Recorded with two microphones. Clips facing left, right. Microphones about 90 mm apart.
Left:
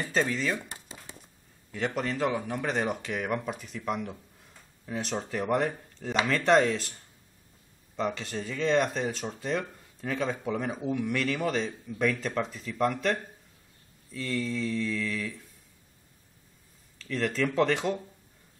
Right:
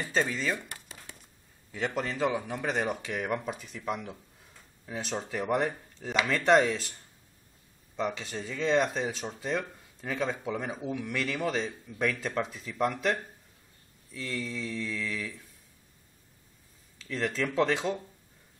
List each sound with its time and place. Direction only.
0.0 s speech: centre (ahead or behind)
0.6 s a sound: 25° left (ahead or behind)
1.9 s speech: centre (ahead or behind)
17.0 s speech: 5° right (ahead or behind)